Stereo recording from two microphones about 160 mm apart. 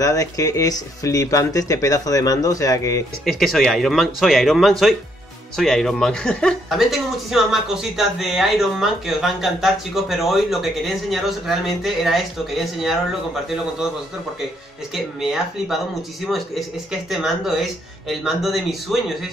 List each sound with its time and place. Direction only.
0.0 s speech: 20° left (ahead or behind)
3.3 s speech: centre (ahead or behind)
15.0 s speech: centre (ahead or behind)